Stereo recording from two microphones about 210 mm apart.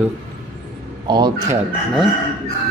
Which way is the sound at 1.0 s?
20° right (ahead or behind).